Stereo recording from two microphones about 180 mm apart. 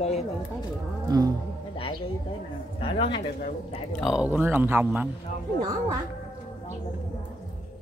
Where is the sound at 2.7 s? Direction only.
30° left (ahead or behind).